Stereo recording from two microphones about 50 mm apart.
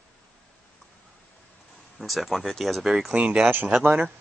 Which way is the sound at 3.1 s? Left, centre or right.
Right.